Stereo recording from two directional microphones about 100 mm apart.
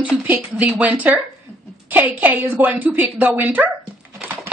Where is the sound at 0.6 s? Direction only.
15° right (ahead or behind).